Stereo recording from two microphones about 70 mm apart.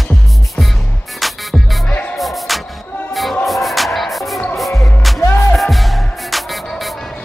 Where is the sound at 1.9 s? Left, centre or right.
Left.